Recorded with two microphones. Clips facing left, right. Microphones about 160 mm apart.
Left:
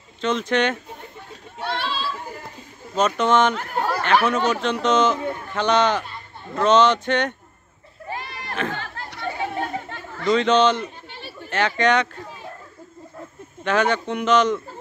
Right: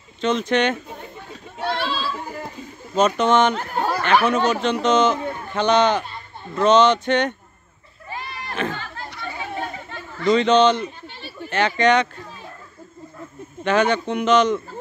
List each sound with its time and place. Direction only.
0.2 s speech: centre (ahead or behind)
1.6 s children playing: 40° right (ahead or behind)
3.0 s speech: centre (ahead or behind)
8.1 s a sound: 65° left (ahead or behind)
8.7 s chatter: 65° left (ahead or behind)
10.2 s speech: centre (ahead or behind)
13.7 s speech: centre (ahead or behind)